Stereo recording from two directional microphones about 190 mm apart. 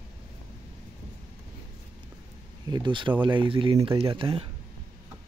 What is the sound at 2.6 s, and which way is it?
Speech, 25° right (ahead or behind).